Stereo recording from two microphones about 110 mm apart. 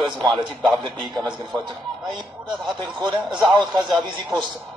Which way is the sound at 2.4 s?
40° right (ahead or behind).